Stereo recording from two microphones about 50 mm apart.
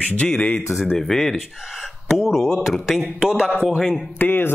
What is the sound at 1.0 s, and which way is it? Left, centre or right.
Speech, centre.